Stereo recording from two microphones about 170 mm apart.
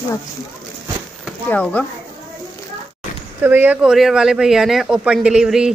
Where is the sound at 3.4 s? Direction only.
10° right (ahead or behind).